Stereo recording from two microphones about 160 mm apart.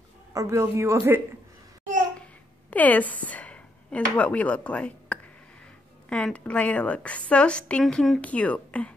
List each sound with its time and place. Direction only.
0.3 s a man's voice: 20° right (ahead or behind)
2.7 s a woman's voice: 10° left (ahead or behind)